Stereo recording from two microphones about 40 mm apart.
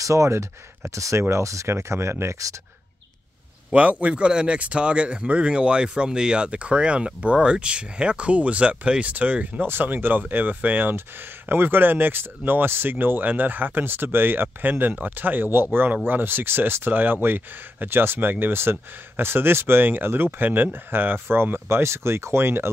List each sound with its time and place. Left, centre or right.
1.1 s speech: right
1.7 s speech: right
3.7 s speech: right
9.6 s speech: right
10.8 s speech: right
18.5 s speech: right